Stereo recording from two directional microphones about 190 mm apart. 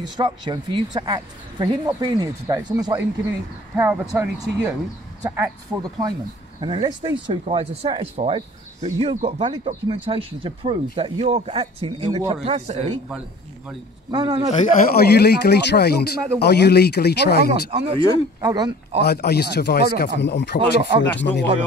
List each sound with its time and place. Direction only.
0.2 s speech: 20° right (ahead or behind)
3.7 s speech: 10° right (ahead or behind); by 13.0 s 35° right (ahead or behind)
14.1 s speech: 25° right (ahead or behind)
15.0 s speech: 55° left (ahead or behind)
17.5 s speech: 30° right (ahead or behind)
18.9 s speech: 55° left (ahead or behind)